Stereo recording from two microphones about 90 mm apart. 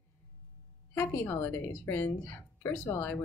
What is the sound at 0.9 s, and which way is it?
Speech, 25° left (ahead or behind).